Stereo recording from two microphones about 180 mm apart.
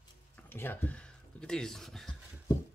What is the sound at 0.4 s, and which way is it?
Speech, 10° left (ahead or behind).